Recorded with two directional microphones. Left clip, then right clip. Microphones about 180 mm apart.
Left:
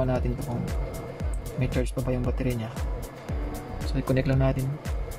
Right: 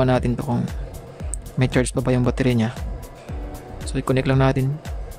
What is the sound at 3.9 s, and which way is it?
Speech, 20° right (ahead or behind).